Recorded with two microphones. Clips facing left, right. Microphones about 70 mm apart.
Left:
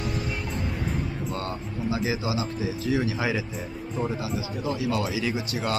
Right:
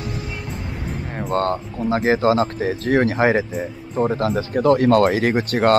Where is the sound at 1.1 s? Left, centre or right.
Right.